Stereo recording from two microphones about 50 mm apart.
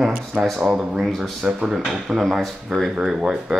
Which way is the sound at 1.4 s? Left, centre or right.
Centre.